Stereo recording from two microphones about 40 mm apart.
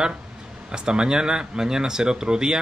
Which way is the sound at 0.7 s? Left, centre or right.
Centre.